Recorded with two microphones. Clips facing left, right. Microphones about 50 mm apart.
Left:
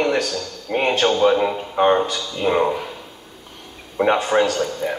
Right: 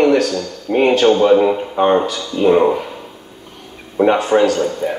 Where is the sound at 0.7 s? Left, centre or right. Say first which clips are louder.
Right 6 dB; centre.